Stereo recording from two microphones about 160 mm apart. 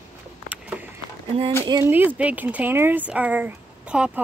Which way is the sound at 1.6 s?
15° right (ahead or behind).